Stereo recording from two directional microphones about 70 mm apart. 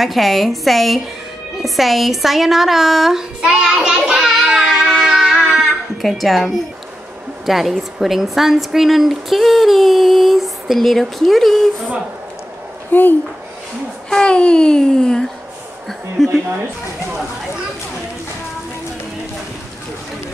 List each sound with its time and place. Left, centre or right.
0.0 s a woman's voice: centre
1.6 s a sound: centre
6.0 s a woman's voice: centre
12.9 s speech: left
14.1 s a child's voice: centre